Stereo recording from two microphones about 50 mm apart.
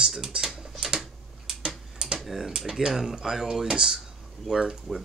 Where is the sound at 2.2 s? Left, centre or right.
Centre.